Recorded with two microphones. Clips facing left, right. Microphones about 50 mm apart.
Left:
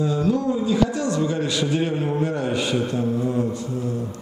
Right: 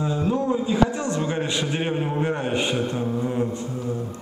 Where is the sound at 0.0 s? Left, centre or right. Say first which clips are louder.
Left 2 dB; right.